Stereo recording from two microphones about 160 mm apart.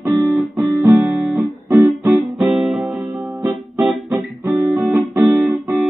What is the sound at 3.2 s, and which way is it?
Music, 10° right (ahead or behind).